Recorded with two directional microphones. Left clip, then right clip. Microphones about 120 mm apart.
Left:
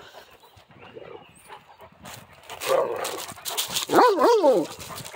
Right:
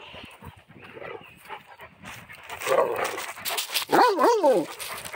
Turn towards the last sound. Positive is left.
turn(degrees=-40)  # may be behind; listen again after turning